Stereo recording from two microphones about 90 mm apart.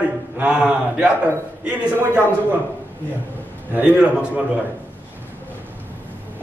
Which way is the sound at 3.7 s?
20° right (ahead or behind).